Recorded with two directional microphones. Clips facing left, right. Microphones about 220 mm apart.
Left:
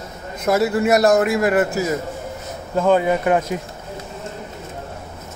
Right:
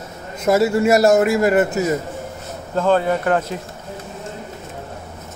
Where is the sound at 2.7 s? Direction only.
10° left (ahead or behind).